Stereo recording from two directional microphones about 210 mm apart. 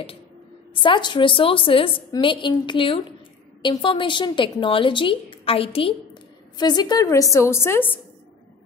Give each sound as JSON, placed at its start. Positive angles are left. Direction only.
{"t": 0.8, "sound": "a woman's voice", "side_deg": 20}